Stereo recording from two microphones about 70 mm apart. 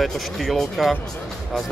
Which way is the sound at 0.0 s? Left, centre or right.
Centre.